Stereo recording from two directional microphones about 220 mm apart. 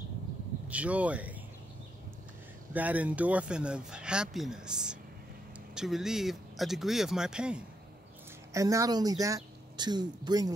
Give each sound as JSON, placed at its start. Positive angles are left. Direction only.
{"t": 0.7, "sound": "speech", "side_deg": -5}
{"t": 2.7, "sound": "speech", "side_deg": -5}
{"t": 8.5, "sound": "speech", "side_deg": -15}